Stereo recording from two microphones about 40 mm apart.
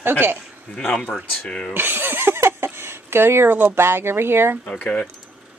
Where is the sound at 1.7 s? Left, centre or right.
Right.